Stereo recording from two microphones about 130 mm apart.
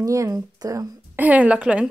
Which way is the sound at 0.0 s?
25° right (ahead or behind).